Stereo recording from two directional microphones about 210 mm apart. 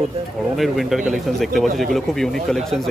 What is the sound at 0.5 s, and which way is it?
Speech, centre (ahead or behind).